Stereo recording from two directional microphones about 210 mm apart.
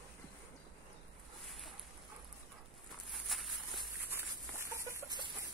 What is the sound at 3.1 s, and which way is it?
Walk, centre (ahead or behind).